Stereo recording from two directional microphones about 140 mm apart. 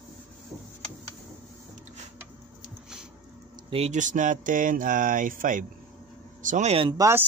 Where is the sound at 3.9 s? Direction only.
65° right (ahead or behind).